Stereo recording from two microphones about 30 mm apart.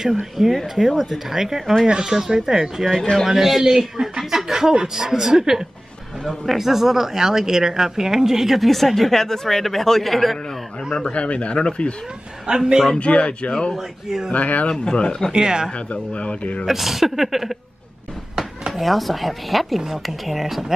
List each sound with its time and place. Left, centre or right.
0.4 s speech: centre
0.7 s a woman's voice: centre
4.6 s speech: right
6.2 s a woman's voice: centre
8.5 s speech: centre
11.1 s speech: left
12.4 s speech: right
13.0 s speech: left
14.3 s speech: left
14.7 s speech: left
15.3 s speech: right
15.9 s speech: left
16.6 s a woman's voice: centre
18.7 s speech: centre